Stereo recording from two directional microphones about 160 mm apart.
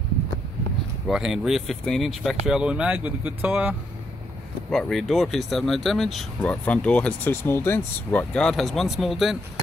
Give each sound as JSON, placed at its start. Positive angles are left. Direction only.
{"t": 1.0, "sound": "speech", "side_deg": -5}